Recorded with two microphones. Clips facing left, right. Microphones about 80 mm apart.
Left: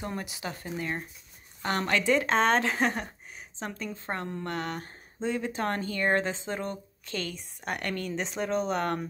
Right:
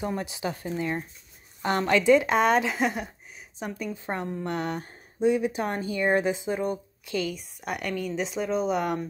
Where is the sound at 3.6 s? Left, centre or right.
Centre.